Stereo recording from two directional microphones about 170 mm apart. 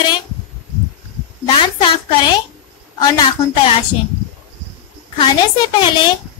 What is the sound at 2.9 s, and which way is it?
Speech, 25° left (ahead or behind).